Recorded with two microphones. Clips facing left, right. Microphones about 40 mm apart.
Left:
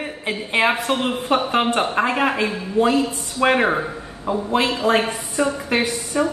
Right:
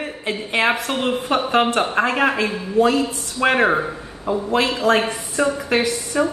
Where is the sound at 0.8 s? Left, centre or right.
Centre.